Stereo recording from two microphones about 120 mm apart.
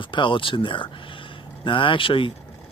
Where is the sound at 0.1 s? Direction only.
45° left (ahead or behind).